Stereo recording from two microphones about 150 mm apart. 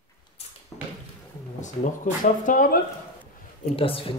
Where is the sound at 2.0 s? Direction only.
60° left (ahead or behind).